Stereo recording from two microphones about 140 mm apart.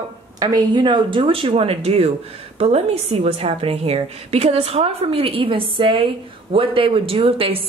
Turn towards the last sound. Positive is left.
turn(degrees=-40)  # may be behind; listen again after turning